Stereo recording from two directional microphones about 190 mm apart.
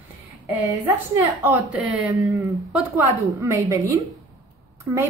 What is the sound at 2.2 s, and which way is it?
Speech, 15° right (ahead or behind).